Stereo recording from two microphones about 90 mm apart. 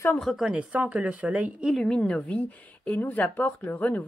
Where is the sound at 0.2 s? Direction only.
Centre (ahead or behind).